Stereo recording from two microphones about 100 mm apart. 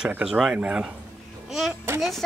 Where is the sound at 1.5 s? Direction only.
5° right (ahead or behind).